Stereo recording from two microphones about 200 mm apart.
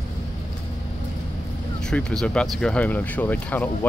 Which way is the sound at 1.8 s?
5° left (ahead or behind).